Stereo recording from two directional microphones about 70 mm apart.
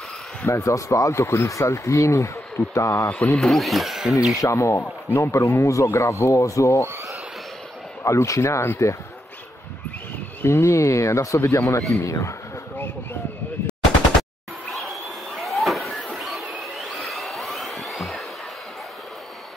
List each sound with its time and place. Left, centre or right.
0.5 s speech: left
3.3 s speech: centre
4.4 s speech: left
8.0 s speech: left
10.4 s speech: left
14.7 s a sound: centre